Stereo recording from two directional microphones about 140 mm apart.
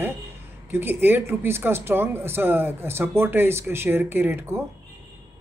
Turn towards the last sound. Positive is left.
turn(degrees=-15)  # may be behind; listen again after turning